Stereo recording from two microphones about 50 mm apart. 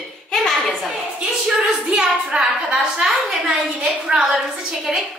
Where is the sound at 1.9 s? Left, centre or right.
Centre.